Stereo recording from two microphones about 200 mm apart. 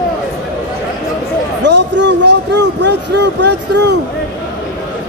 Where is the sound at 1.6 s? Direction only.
60° right (ahead or behind).